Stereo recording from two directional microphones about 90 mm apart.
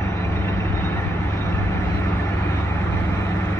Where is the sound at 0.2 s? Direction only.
25° left (ahead or behind).